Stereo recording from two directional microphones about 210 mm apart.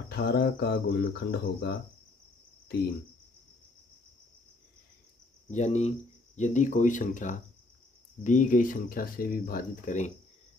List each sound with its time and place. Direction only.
0.1 s speech: 50° left (ahead or behind)
5.5 s speech: 35° left (ahead or behind)